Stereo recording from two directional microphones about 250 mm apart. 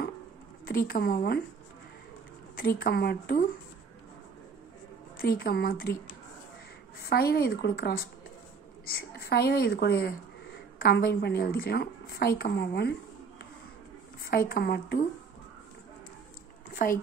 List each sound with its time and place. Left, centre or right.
0.7 s a woman's voice: left
2.5 s a woman's voice: left
5.2 s a woman's voice: left
7.1 s a woman's voice: left
14.2 s a woman's voice: left
16.7 s speech: left